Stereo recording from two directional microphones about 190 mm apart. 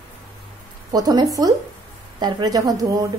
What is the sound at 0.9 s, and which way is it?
Speech, 20° right (ahead or behind).